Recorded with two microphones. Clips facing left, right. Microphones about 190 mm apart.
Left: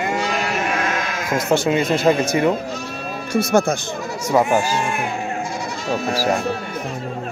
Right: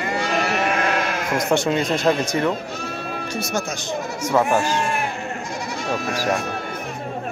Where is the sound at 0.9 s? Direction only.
60° right (ahead or behind).